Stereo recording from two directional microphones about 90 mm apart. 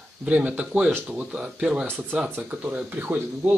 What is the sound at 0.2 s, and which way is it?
Speech, 15° right (ahead or behind).